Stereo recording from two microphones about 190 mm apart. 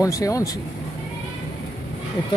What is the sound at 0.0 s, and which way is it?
Speech, 15° left (ahead or behind).